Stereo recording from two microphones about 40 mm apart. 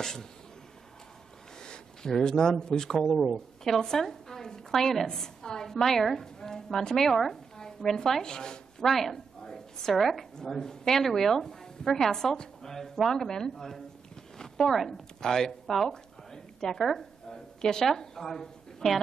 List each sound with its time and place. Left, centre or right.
0.0 s speech: centre
1.6 s speech: centre
3.0 s speech: centre
3.8 s speech: centre
9.4 s a sound: centre
9.9 s a woman's voice: centre
16.8 s a sound: centre
17.8 s speech: centre
18.8 s a woman's voice: centre